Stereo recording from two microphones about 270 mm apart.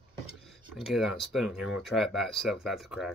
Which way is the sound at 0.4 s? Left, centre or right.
Centre.